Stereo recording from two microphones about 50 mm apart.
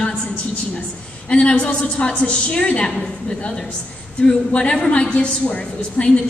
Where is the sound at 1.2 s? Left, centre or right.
Left.